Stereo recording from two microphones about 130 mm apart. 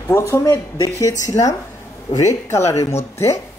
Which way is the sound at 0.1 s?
20° left (ahead or behind).